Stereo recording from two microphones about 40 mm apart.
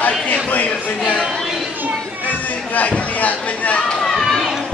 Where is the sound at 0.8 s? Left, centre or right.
Left.